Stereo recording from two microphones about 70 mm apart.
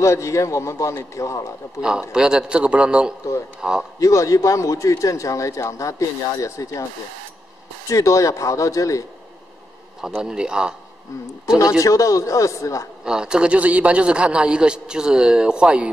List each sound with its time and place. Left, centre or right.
0.0 s speech: left
1.8 s a man's voice: centre
4.0 s speech: left
7.9 s speech: left
10.0 s a man's voice: centre
11.8 s speech: left
13.0 s a man's voice: centre